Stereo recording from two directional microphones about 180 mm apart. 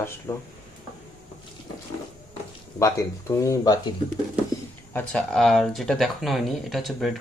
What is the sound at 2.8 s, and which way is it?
Speech, 15° left (ahead or behind).